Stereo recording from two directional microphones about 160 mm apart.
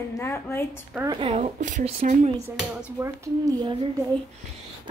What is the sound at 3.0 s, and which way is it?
Speech, 10° right (ahead or behind).